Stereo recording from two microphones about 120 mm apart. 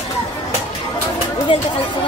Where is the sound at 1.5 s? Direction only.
45° left (ahead or behind).